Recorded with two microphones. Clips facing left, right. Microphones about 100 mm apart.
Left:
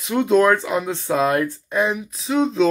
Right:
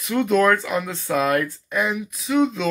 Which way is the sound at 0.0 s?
25° left (ahead or behind).